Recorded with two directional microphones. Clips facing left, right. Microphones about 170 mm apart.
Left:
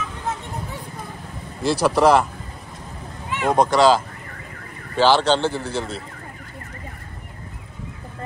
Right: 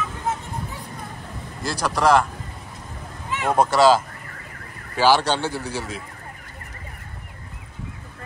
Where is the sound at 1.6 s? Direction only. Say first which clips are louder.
Left 5 dB; centre (ahead or behind).